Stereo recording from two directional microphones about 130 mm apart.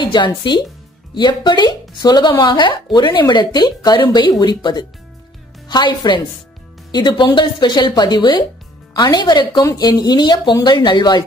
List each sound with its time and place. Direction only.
0.0 s speech: 35° left (ahead or behind)